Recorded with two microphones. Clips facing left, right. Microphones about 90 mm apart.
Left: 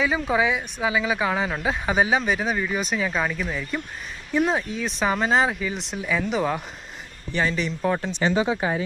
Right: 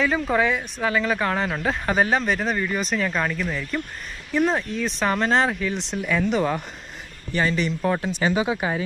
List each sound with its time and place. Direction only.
0.0 s speech: 5° left (ahead or behind)
8.3 s speech: 10° right (ahead or behind)
8.5 s speech: 35° left (ahead or behind)